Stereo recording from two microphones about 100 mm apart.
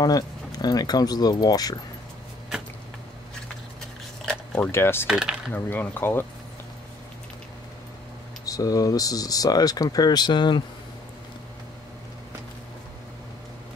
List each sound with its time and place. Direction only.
0.0 s speech: 40° left (ahead or behind)
4.6 s speech: 25° left (ahead or behind)
5.0 s speech: 10° right (ahead or behind)
5.5 s speech: 20° left (ahead or behind)
8.5 s speech: 35° left (ahead or behind)